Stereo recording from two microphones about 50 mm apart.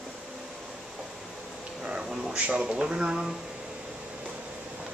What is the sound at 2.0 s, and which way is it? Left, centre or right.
Speech, centre.